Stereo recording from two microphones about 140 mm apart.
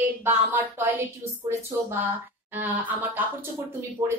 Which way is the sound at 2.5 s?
10° right (ahead or behind).